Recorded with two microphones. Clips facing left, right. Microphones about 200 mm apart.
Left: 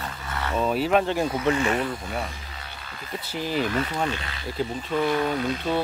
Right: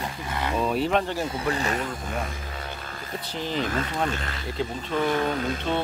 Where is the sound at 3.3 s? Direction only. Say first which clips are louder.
Left 2 dB; 10° left (ahead or behind).